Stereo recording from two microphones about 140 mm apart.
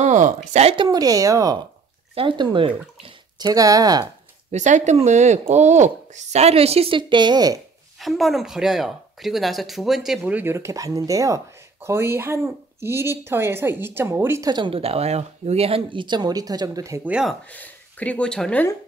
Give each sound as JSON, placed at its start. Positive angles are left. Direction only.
{"t": 0.0, "sound": "speech", "side_deg": -60}
{"t": 0.8, "sound": "speech", "side_deg": -25}
{"t": 2.1, "sound": "speech", "side_deg": -35}
{"t": 4.5, "sound": "speech", "side_deg": -60}
{"t": 8.0, "sound": "speech", "side_deg": 0}
{"t": 14.5, "sound": "speech", "side_deg": -40}
{"t": 17.0, "sound": "speech", "side_deg": -5}
{"t": 17.5, "sound": "speech", "side_deg": 10}